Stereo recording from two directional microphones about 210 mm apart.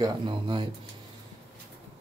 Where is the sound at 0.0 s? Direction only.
25° right (ahead or behind).